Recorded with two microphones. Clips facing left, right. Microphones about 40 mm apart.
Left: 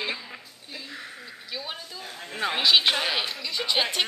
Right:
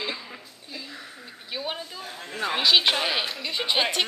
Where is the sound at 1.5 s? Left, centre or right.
Right.